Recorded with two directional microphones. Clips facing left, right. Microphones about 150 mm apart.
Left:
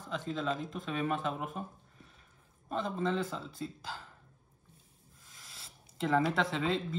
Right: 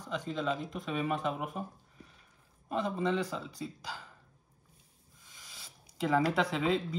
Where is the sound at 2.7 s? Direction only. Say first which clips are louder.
Right 2 dB; centre (ahead or behind).